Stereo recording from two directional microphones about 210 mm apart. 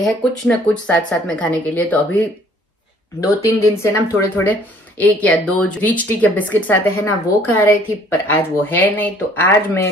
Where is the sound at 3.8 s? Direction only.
10° left (ahead or behind).